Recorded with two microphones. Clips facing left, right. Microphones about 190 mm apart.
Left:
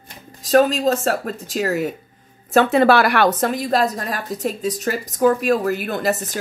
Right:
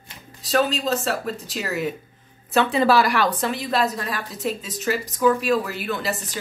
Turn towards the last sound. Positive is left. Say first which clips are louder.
# left 5 dB
turn(degrees=45)  # may be behind; listen again after turning